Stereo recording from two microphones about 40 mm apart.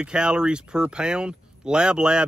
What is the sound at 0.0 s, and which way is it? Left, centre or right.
Speech, right.